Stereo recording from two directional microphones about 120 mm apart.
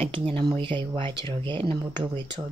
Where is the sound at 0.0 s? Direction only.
50° right (ahead or behind).